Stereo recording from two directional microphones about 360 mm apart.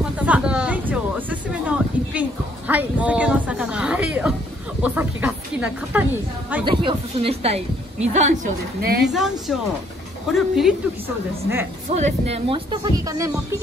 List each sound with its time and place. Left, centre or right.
0.0 s a sound: centre
6.5 s a woman's voice: centre
9.0 s a woman's voice: centre
11.9 s speech: centre